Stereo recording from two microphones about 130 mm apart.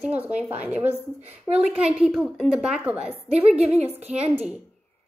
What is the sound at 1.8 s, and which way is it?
A woman's voice, 5° right (ahead or behind).